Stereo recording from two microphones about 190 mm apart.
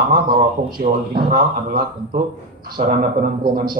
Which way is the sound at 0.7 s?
50° right (ahead or behind).